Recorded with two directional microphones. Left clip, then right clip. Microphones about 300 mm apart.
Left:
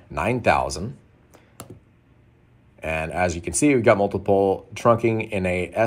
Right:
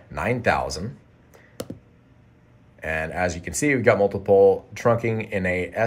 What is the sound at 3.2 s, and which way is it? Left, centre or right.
Speech, centre.